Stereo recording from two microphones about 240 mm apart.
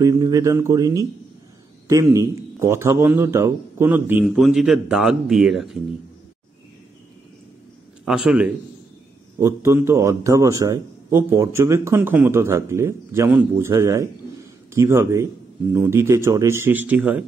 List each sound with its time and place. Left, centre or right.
0.0 s a man's voice: centre
8.0 s a man's voice: centre